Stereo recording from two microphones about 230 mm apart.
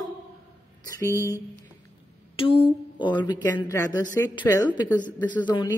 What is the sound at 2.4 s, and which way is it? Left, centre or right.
A woman's voice, left.